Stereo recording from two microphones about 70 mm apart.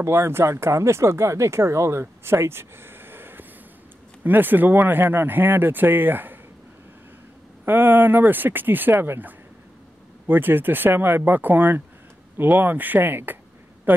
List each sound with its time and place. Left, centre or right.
0.0 s speech: right
7.6 s speech: right